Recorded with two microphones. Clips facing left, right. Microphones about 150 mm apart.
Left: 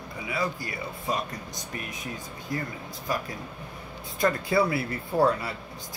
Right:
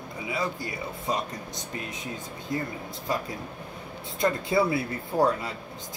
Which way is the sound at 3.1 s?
25° right (ahead or behind).